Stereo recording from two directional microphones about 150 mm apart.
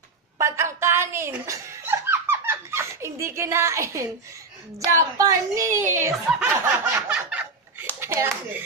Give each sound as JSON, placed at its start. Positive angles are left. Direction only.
{"t": 0.4, "sound": "chuckle", "side_deg": -20}
{"t": 4.7, "sound": "speech", "side_deg": -20}
{"t": 7.1, "sound": "a sound", "side_deg": -5}
{"t": 8.0, "sound": "a child's voice", "side_deg": -15}